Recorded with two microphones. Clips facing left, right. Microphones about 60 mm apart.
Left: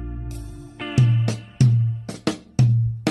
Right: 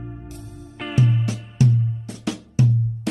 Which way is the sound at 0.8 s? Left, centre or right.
Centre.